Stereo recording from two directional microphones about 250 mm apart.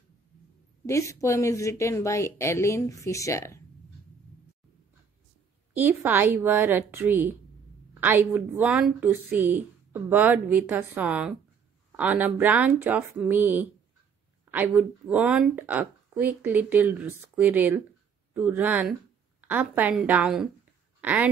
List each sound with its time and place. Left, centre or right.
0.8 s speech: centre
5.8 s a woman's voice: centre